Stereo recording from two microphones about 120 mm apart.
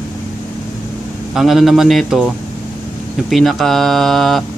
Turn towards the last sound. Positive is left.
turn(degrees=0)  # may be behind; listen again after turning